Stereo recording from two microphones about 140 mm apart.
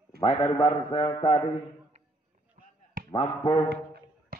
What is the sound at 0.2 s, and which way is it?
A man's voice, 35° left (ahead or behind).